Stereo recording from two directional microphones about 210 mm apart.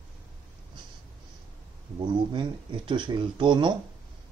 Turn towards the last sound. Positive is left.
turn(degrees=-20)  # may be behind; listen again after turning